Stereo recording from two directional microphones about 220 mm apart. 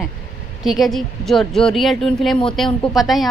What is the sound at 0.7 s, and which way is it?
A woman's voice, centre (ahead or behind).